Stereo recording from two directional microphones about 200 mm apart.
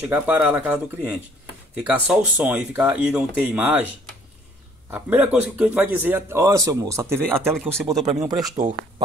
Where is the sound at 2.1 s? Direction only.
10° right (ahead or behind).